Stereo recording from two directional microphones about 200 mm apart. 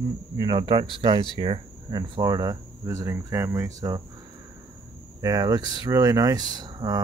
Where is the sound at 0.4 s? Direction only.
25° right (ahead or behind).